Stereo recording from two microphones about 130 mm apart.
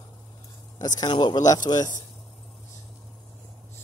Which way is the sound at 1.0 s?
35° left (ahead or behind).